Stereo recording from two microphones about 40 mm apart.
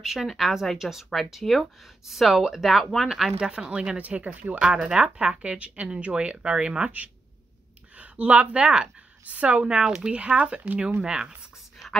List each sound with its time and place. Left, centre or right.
0.0 s a woman's voice: centre
1.1 s speech: centre
3.3 s speech: right
4.0 s speech: right
4.8 s speech: right
7.9 s speech: right
9.7 s speech: centre
11.7 s whispering: centre